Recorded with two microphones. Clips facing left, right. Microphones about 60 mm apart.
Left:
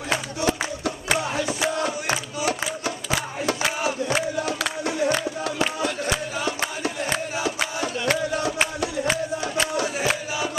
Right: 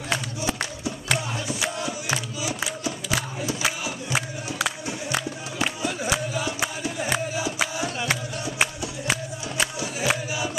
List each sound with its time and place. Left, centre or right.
0.4 s music: left
1.8 s a sound: left
4.8 s music: left
5.9 s music: centre
7.8 s music: centre
10.0 s choir: centre